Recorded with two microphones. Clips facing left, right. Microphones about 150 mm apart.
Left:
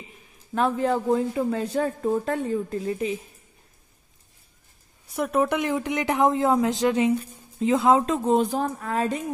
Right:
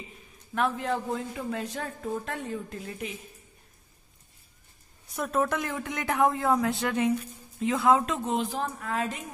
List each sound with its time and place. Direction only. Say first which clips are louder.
0.6 s speech: left 5 dB; 35° left (ahead or behind)
5.1 s speech: left 5 dB; 10° left (ahead or behind); by 9.0 s 40° left (ahead or behind)